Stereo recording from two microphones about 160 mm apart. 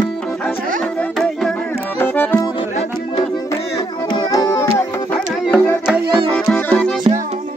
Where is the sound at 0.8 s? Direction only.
5° left (ahead or behind).